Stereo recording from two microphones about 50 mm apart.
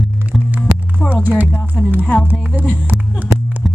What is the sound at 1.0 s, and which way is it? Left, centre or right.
A woman's voice, left.